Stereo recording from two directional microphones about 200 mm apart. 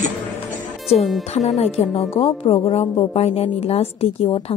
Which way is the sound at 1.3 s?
35° left (ahead or behind).